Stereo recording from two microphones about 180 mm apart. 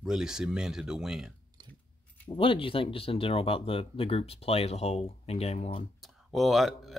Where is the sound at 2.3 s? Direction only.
30° left (ahead or behind).